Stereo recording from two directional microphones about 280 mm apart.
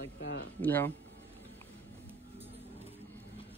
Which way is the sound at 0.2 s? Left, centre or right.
Left.